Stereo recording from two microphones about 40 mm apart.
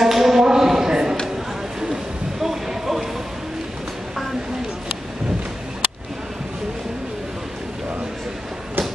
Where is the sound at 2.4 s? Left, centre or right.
Centre.